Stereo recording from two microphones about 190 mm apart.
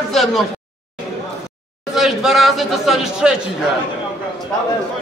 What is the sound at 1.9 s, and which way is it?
A man's voice, centre (ahead or behind).